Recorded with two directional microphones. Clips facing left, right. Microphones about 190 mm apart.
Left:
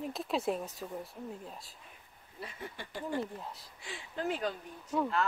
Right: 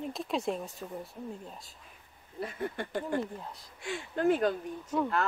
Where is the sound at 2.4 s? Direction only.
55° right (ahead or behind).